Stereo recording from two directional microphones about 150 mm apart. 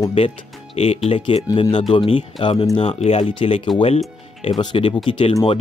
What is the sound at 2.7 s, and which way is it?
Speech, 40° left (ahead or behind).